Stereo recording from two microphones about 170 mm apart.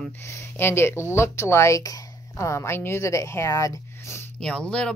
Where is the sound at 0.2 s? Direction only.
15° left (ahead or behind).